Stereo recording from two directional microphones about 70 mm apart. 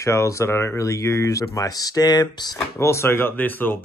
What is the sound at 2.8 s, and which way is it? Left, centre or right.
Speech, left.